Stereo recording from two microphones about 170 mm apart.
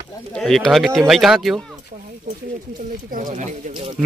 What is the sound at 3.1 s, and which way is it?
Speech, 50° right (ahead or behind).